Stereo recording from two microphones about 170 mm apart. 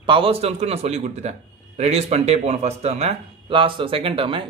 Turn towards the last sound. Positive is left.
turn(degrees=-30)  # may be behind; listen again after turning